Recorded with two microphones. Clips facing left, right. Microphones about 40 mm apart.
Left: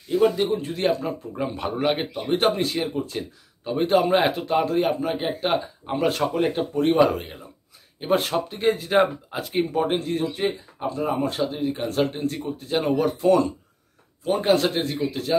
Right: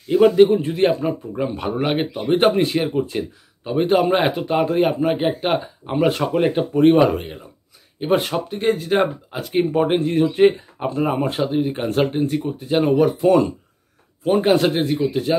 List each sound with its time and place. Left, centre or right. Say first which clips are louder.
0.4 s speech: right 9 dB; right
1.3 s speech: right 4 dB; centre
4.6 s speech: right 4 dB; right; by 9.5 s centre
9.7 s speech: right 5 dB; right
12.1 s speech: right 6 dB; centre